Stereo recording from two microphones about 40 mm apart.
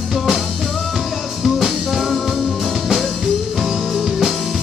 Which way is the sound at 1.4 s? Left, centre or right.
Centre.